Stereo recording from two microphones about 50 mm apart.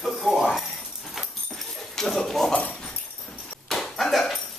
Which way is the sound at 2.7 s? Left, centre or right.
Centre.